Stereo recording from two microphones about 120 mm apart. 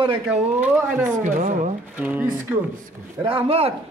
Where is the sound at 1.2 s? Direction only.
90° right.